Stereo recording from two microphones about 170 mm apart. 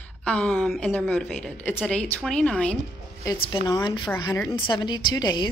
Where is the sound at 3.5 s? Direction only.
25° left (ahead or behind).